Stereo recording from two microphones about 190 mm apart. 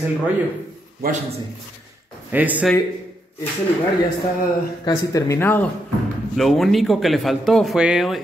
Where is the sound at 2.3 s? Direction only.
10° right (ahead or behind).